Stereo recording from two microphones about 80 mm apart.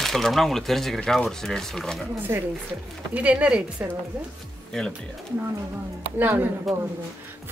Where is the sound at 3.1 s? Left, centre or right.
Centre.